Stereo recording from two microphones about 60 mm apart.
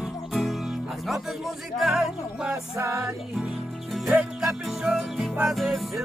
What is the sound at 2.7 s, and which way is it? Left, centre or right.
Music, right.